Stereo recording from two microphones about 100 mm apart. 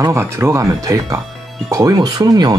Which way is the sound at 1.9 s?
45° right (ahead or behind).